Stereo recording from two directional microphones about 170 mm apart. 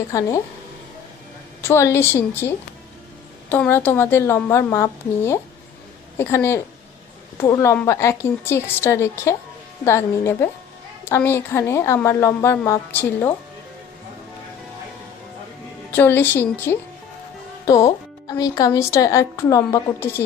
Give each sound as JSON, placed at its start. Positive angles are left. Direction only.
{"t": 0.1, "sound": "speech", "side_deg": 20}
{"t": 1.6, "sound": "a woman's voice", "side_deg": 15}
{"t": 15.9, "sound": "a woman's voice", "side_deg": 15}